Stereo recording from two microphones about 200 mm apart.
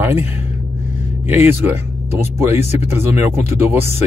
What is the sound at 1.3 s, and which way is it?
Speech, 10° right (ahead or behind).